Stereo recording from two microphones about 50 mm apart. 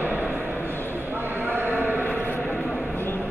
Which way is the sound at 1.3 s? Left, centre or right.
Right.